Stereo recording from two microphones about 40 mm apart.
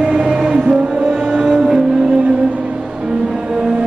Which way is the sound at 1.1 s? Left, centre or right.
Centre.